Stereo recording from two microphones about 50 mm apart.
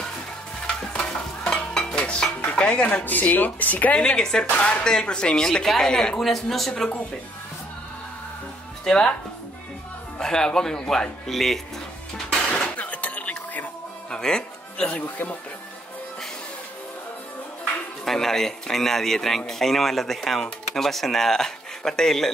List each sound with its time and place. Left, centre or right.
0.7 s stir: centre
2.5 s speech: centre
4.0 s speech: centre
4.5 s speech: left
4.8 s speech: centre
8.8 s speech: centre
10.1 s speech: centre
12.3 s music: centre
12.6 s chink: left
14.1 s speech: centre
14.8 s speech: left
18.0 s speech: centre